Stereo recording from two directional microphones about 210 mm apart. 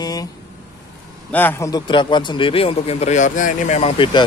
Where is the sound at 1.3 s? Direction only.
10° left (ahead or behind).